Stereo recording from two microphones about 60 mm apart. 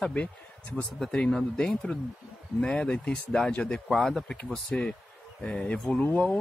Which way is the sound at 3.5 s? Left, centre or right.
Centre.